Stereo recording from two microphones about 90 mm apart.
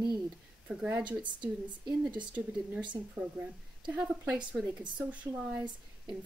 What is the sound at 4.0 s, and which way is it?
A woman's voice, 10° right (ahead or behind).